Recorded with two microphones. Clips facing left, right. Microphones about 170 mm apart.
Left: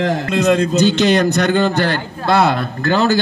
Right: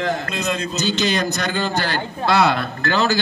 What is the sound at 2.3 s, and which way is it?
Speech, 50° left (ahead or behind).